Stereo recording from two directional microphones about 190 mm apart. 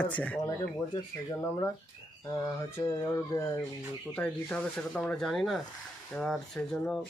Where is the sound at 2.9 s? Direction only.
20° left (ahead or behind).